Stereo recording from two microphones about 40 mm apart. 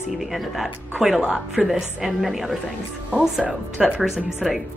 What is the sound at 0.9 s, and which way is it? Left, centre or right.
A woman's voice, centre.